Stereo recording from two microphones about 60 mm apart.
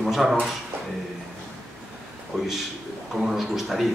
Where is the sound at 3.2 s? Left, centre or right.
Centre.